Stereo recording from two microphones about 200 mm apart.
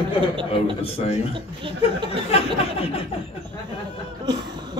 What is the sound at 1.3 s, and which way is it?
Speech, 25° right (ahead or behind).